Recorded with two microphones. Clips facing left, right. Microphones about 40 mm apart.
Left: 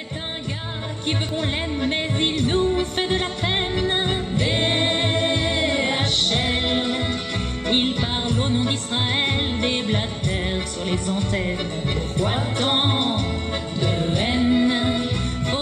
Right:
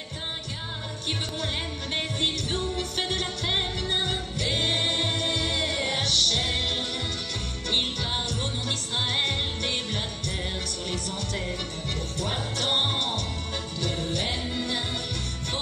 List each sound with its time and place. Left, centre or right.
1.8 s music: left